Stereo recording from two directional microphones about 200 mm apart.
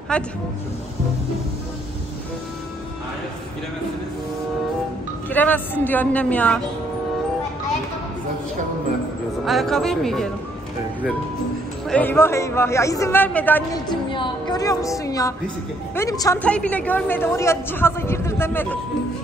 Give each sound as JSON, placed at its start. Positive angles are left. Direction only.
{"t": 0.1, "sound": "speech", "side_deg": 5}
{"t": 5.3, "sound": "a woman's voice", "side_deg": 10}
{"t": 9.5, "sound": "speech", "side_deg": 0}
{"t": 11.9, "sound": "a woman's voice", "side_deg": 10}
{"t": 13.8, "sound": "a woman's voice", "side_deg": 25}